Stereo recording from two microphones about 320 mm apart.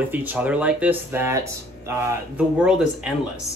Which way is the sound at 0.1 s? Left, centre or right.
Centre.